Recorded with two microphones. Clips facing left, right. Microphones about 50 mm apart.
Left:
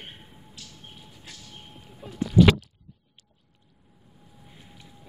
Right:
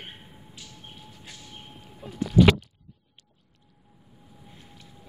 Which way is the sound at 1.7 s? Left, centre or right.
Centre.